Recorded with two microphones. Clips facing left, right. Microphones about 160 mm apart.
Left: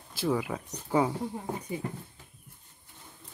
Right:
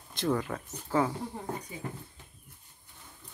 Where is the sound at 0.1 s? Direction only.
5° left (ahead or behind).